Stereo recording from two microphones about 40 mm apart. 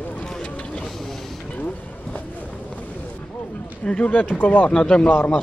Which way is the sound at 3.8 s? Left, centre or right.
Left.